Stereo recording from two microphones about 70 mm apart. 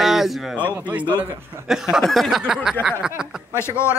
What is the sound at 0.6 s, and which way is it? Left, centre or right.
Speech, right.